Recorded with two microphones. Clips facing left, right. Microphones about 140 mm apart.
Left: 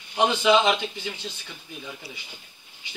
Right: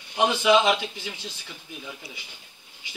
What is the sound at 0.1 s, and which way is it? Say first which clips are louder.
A man's voice: even; 5° right (ahead or behind).